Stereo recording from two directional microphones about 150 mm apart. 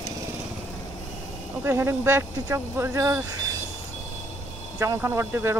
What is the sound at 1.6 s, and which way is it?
Speech, 15° right (ahead or behind).